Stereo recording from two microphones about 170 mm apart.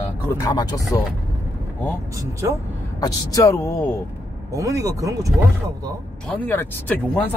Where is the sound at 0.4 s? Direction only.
25° left (ahead or behind).